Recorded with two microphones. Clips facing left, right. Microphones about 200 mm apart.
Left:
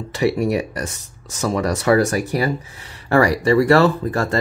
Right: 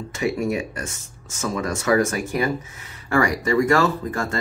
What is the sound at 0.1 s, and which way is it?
Speech, 35° left (ahead or behind).